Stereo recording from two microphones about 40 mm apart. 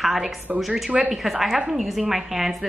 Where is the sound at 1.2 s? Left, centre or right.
Centre.